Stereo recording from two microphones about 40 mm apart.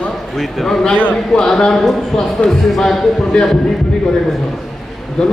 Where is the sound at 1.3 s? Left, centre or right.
Centre.